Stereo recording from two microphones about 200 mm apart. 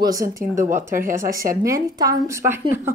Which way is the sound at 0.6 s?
40° right (ahead or behind).